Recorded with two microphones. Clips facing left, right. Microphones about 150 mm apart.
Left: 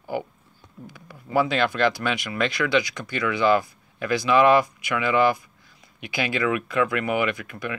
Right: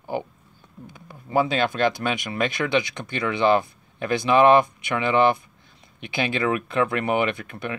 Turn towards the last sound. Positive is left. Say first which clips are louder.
# right 1 dB
turn(degrees=-25)  # may be behind; listen again after turning